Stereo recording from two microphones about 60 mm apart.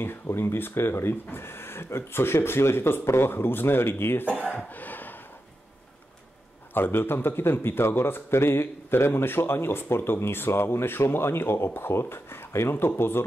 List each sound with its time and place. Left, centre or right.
0.0 s a man's voice: left
4.7 s a sound: left
6.7 s a man's voice: left